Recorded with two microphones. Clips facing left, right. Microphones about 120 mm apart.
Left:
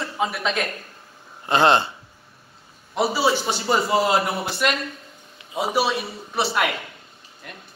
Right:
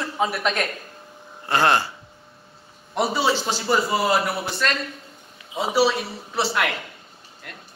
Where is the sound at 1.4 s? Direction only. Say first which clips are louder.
Left 2 dB; 20° left (ahead or behind).